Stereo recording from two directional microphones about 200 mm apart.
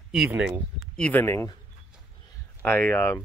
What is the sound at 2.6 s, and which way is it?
Speech, 10° left (ahead or behind).